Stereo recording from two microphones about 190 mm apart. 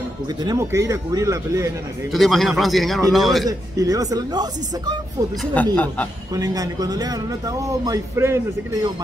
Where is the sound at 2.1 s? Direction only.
Centre (ahead or behind).